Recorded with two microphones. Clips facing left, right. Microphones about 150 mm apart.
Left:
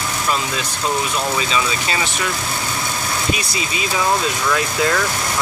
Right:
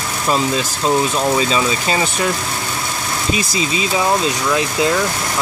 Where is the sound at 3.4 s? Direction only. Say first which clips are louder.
Right 5 dB; 25° right (ahead or behind).